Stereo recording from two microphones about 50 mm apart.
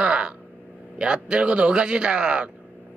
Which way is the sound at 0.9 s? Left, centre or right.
Centre.